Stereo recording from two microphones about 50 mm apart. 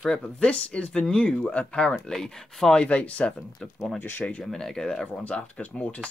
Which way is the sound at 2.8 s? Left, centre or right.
Left.